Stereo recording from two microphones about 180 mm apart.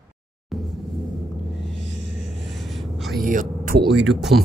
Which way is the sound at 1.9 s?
90° right.